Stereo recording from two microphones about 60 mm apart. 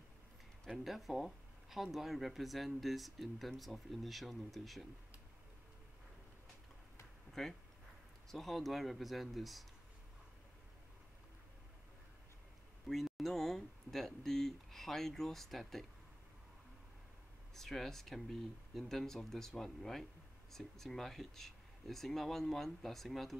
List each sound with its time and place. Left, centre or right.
0.7 s speech: centre
7.4 s speech: centre
12.8 s speech: centre
17.6 s speech: centre